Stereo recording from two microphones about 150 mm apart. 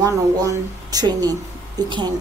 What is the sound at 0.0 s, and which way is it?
A woman's voice, 25° right (ahead or behind).